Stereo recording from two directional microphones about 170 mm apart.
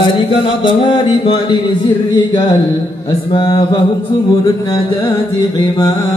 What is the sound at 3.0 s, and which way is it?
Music, 25° left (ahead or behind).